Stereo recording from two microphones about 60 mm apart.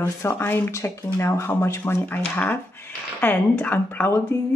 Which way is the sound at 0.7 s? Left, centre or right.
Left.